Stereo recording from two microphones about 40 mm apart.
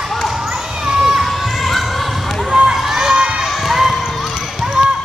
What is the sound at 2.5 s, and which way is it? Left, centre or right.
Run, right.